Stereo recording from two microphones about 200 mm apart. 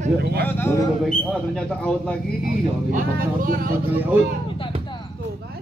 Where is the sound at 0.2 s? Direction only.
50° right (ahead or behind).